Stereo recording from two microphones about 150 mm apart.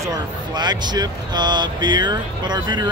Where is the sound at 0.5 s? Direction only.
30° right (ahead or behind).